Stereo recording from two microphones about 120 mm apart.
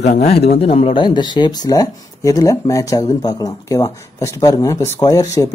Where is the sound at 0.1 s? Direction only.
65° left (ahead or behind).